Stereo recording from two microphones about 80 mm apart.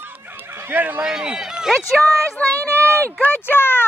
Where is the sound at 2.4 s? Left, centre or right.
Left.